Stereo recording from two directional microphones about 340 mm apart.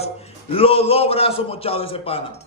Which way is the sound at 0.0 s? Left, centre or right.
Centre.